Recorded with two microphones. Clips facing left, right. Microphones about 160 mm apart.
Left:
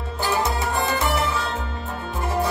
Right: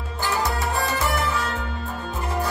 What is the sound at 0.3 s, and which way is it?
Music, 20° left (ahead or behind).